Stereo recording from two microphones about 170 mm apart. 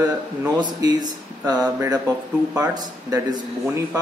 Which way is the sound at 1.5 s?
20° right (ahead or behind).